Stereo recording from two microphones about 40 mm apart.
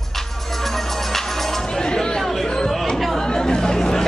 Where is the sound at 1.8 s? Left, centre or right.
Centre.